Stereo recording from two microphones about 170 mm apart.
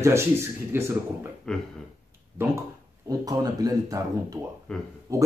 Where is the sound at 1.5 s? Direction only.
5° left (ahead or behind).